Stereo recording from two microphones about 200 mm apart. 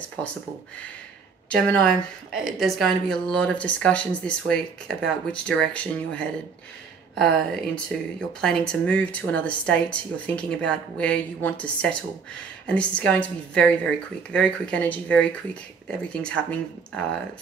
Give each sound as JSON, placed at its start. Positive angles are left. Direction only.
{"t": 1.6, "sound": "speech", "side_deg": 5}